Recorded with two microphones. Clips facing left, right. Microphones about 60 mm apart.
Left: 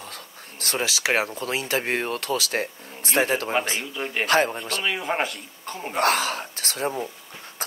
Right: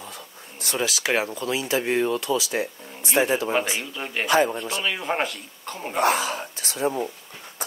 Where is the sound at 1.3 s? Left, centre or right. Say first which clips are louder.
Right 1 dB; left.